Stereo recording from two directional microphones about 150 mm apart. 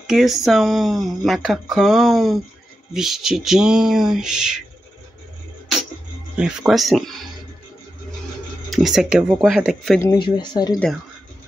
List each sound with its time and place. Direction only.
0.0 s speech: centre (ahead or behind)
6.3 s speech: 5° right (ahead or behind)
8.6 s speech: centre (ahead or behind)
10.1 s speech: 30° left (ahead or behind)